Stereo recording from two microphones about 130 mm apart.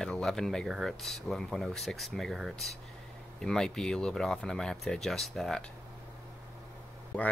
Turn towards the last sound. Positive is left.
turn(degrees=10)  # may be behind; listen again after turning